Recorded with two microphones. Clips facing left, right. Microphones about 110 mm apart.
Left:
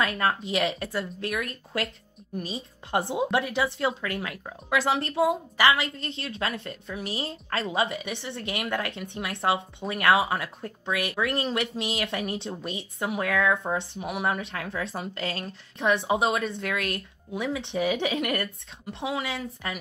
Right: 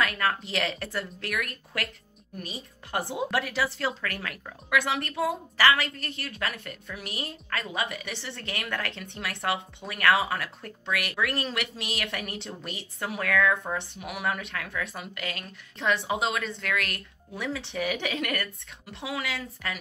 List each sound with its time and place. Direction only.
0.0 s a woman's voice: 25° left (ahead or behind)